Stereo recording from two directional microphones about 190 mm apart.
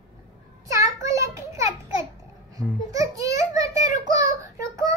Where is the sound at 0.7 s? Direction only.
15° right (ahead or behind).